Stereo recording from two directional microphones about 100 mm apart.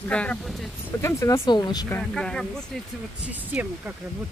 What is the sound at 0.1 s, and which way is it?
Speech, 10° left (ahead or behind).